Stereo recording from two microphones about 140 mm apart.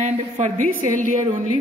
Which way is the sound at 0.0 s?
60° right (ahead or behind).